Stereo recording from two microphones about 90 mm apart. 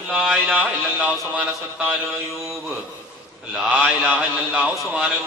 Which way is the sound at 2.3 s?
Centre (ahead or behind).